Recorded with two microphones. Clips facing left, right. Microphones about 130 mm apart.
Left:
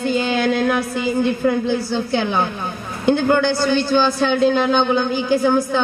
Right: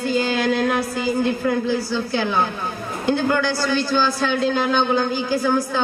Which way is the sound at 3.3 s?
25° left (ahead or behind).